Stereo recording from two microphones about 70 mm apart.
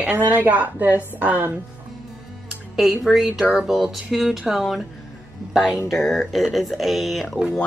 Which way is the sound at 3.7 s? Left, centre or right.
Centre.